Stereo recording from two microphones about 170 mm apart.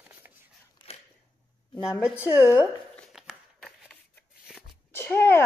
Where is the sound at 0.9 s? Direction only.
35° left (ahead or behind).